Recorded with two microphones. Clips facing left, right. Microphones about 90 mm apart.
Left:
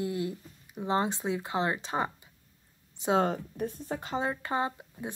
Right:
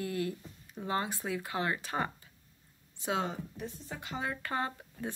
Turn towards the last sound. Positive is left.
turn(degrees=20)  # may be behind; listen again after turning